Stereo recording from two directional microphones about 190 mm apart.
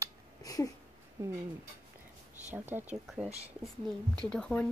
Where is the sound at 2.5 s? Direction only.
10° right (ahead or behind).